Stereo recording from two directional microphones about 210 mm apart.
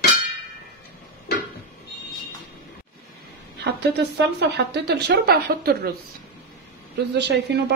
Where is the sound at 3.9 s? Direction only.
55° right (ahead or behind).